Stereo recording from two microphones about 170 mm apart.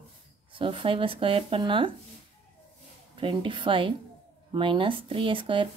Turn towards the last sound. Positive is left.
turn(degrees=-30)  # may be behind; listen again after turning